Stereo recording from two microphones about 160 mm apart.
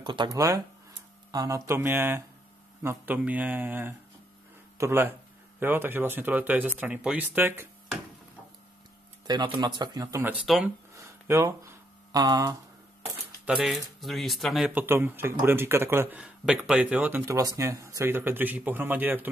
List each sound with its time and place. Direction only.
0.0 s speech: 30° right (ahead or behind)
0.3 s speech: 20° right (ahead or behind)
9.3 s speech: 25° right (ahead or behind)
10.2 s speech: 5° right (ahead or behind)
11.0 s a sound: 20° right (ahead or behind)
13.6 s speech: centre (ahead or behind)